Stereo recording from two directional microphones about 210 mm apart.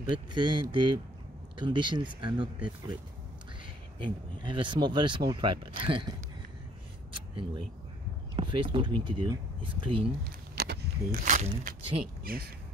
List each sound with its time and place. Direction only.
0.1 s speech: 20° right (ahead or behind)
4.0 s speech: 25° right (ahead or behind)
7.1 s a sound: 25° right (ahead or behind)
8.4 s speech: 25° right (ahead or behind)
10.5 s speech: 50° right (ahead or behind)